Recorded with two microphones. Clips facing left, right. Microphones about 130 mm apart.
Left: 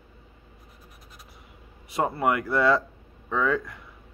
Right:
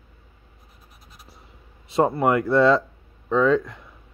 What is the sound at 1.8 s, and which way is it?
Speech, 25° right (ahead or behind).